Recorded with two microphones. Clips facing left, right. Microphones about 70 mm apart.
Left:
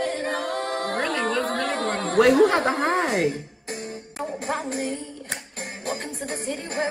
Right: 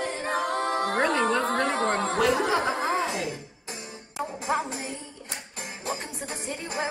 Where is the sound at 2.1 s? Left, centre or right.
Left.